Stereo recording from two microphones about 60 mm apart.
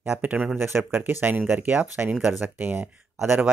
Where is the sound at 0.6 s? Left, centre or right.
Right.